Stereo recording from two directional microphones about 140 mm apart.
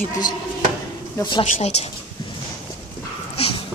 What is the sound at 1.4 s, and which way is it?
Speech, 50° left (ahead or behind).